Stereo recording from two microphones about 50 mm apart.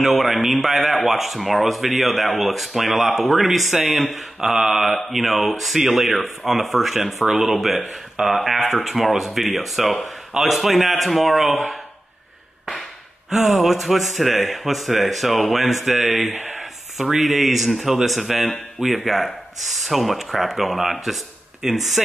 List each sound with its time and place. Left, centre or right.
0.0 s speech: centre
4.4 s mantra: centre
4.8 s speech: centre
8.2 s mantra: centre
8.8 s speech: centre
13.3 s speech: centre